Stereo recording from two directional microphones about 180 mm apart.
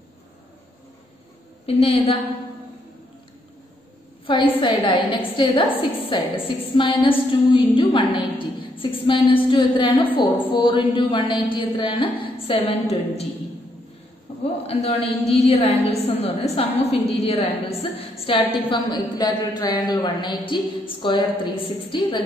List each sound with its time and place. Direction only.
1.7 s a woman's voice: 35° left (ahead or behind)
4.6 s a woman's voice: 30° left (ahead or behind)
14.4 s a woman's voice: 35° left (ahead or behind)